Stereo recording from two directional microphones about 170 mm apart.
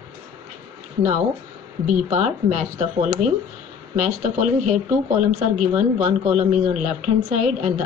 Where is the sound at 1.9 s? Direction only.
45° right (ahead or behind).